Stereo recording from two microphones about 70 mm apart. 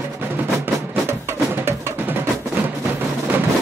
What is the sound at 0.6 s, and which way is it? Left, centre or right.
Music, right.